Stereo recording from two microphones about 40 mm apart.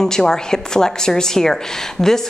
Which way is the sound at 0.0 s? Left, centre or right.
Centre.